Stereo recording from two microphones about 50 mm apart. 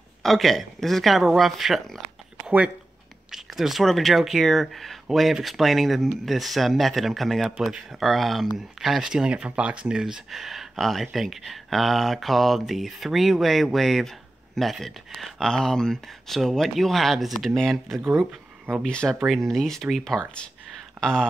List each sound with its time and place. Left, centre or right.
0.2 s speech: centre
3.3 s speech: centre
3.8 s speech: centre
4.1 s speech: centre
7.5 s speech: centre
8.0 s speech: centre
9.3 s speech: right
10.3 s speech: centre
15.3 s speech: centre
19.0 s speech: right
19.4 s speech: centre